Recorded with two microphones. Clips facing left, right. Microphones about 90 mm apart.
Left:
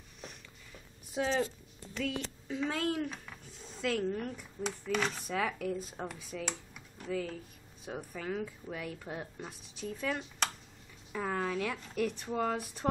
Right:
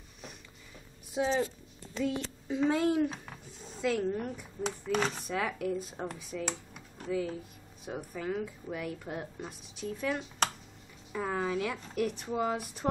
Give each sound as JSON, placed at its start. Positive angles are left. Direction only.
{"t": 1.1, "sound": "a woman's voice", "side_deg": -15}
{"t": 4.9, "sound": "speech", "side_deg": -40}
{"t": 5.3, "sound": "a woman's voice", "side_deg": 0}